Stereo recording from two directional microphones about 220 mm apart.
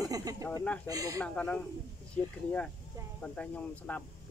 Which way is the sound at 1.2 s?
5° left (ahead or behind).